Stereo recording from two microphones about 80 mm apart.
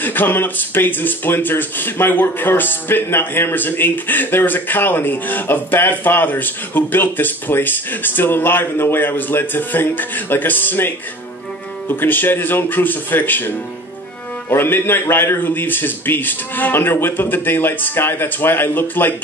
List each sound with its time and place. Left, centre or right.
0.0 s speech: left
12.0 s speech: left
14.5 s speech: left